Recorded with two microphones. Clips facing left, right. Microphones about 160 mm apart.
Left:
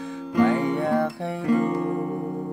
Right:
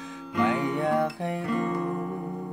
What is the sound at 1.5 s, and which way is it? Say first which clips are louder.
Guitar: left 8 dB; 40° left (ahead or behind).